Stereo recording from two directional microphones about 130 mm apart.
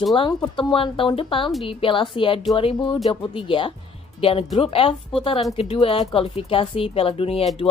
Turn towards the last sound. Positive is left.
turn(degrees=50)  # may be behind; listen again after turning